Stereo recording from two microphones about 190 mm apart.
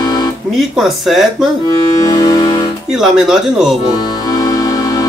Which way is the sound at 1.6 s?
20° left (ahead or behind).